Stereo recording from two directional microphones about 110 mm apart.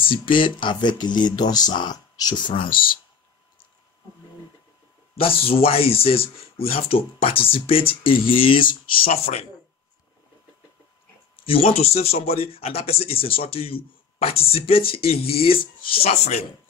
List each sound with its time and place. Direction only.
0.0 s speech: 50° left (ahead or behind)
2.5 s speech: 50° left (ahead or behind)
5.2 s speech: 60° left (ahead or behind)
9.1 s speech: 70° left (ahead or behind)
11.4 s speech: 60° left (ahead or behind)
16.1 s speech: 85° left